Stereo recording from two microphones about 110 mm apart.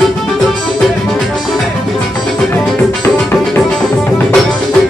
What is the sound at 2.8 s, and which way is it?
Music, 15° left (ahead or behind).